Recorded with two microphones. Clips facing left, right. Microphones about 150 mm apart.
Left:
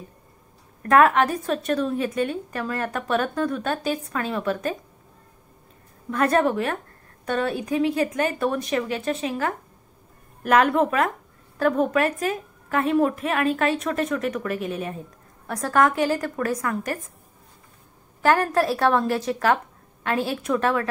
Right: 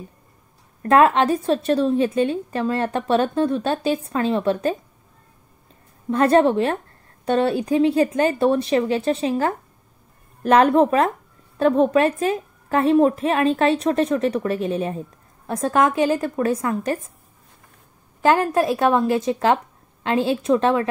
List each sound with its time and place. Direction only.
0.8 s a woman's voice: 25° right (ahead or behind)
6.0 s a woman's voice: 30° right (ahead or behind)
18.2 s a woman's voice: 20° right (ahead or behind)